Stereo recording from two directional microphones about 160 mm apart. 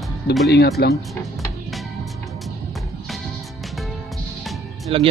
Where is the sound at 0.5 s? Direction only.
90° left.